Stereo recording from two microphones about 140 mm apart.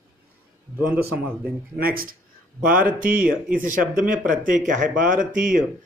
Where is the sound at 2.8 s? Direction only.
80° right.